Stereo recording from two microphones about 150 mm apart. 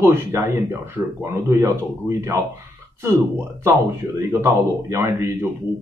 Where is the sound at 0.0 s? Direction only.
15° right (ahead or behind).